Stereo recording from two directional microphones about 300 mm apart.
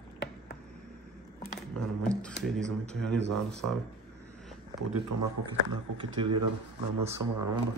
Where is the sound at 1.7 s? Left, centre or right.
Centre.